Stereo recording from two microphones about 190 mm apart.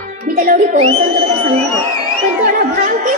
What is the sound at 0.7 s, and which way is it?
Speech, 30° right (ahead or behind).